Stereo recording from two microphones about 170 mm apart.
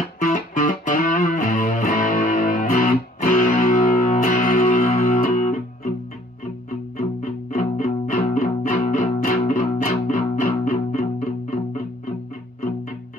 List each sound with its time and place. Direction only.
0.2 s music: 50° left (ahead or behind)
7.0 s music: 50° left (ahead or behind)